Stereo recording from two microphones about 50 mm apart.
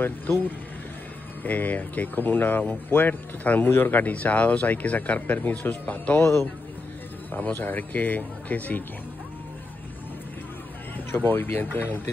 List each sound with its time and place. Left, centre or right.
1.4 s speech: left
7.3 s speech: left
11.1 s speech: left